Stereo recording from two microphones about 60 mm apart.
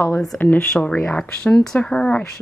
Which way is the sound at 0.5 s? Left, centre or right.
Centre.